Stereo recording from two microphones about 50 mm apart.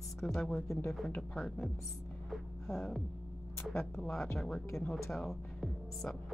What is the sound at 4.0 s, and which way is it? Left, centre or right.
A woman's voice, centre.